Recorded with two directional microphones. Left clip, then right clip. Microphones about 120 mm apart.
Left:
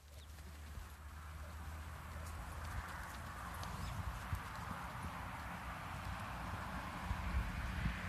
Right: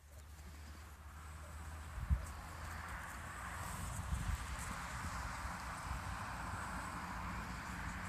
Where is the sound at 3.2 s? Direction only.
15° right (ahead or behind).